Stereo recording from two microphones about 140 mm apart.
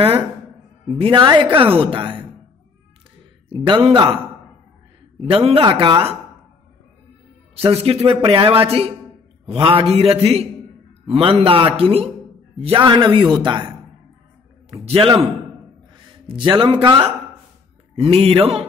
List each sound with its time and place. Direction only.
0.9 s speech: 35° right (ahead or behind)
3.4 s speech: 40° right (ahead or behind)
5.3 s speech: 40° right (ahead or behind)
7.5 s a man's voice: 45° right (ahead or behind)